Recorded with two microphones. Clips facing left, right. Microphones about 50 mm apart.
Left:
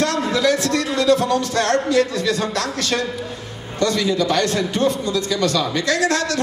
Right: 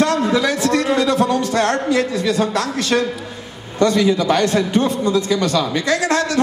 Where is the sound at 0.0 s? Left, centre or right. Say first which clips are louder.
Right 2 dB; right.